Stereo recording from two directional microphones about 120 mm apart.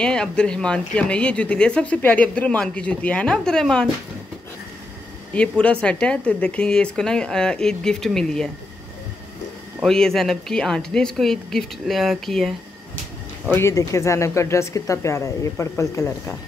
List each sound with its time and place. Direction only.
0.0 s speech: 5° left (ahead or behind)
5.3 s speech: 10° left (ahead or behind)
9.8 s a woman's voice: 5° left (ahead or behind)
13.5 s speech: 20° left (ahead or behind)